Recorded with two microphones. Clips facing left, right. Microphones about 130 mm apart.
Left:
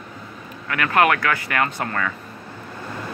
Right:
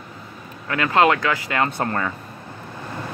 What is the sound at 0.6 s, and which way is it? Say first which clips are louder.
Speech: right 1 dB; 25° right (ahead or behind).